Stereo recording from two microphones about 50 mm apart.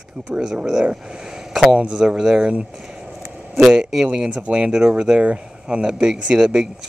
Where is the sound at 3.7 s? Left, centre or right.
Centre.